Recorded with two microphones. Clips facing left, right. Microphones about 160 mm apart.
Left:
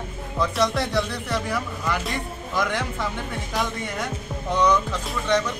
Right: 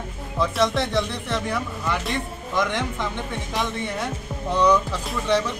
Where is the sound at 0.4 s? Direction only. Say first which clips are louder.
Right 1 dB; centre (ahead or behind).